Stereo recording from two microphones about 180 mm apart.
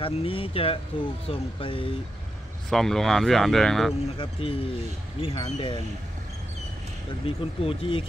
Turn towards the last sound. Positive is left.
turn(degrees=30)  # may be behind; listen again after turning